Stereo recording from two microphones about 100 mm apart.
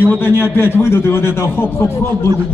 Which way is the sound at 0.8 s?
25° left (ahead or behind).